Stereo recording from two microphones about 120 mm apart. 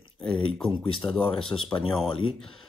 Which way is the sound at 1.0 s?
25° left (ahead or behind).